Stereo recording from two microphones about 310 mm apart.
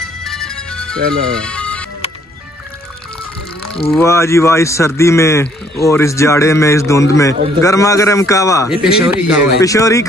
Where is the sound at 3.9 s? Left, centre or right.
Centre.